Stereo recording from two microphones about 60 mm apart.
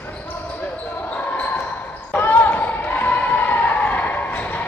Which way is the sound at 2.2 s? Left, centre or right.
Left.